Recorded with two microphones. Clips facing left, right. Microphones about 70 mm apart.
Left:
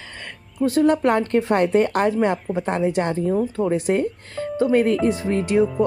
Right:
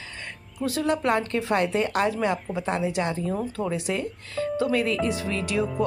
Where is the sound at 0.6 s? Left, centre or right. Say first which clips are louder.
Left 7 dB; left.